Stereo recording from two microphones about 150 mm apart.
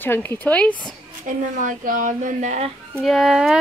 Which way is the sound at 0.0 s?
15° left (ahead or behind).